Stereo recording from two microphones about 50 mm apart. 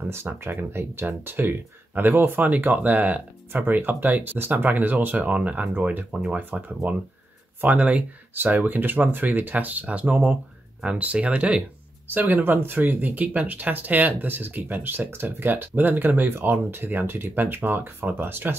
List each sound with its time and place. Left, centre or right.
0.1 s speech: right
8.4 s speech: right
12.1 s speech: right